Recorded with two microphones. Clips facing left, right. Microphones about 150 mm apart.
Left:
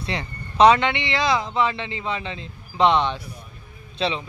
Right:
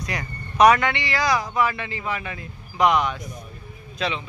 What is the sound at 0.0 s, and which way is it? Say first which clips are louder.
Speech: left 1 dB; 25° left (ahead or behind).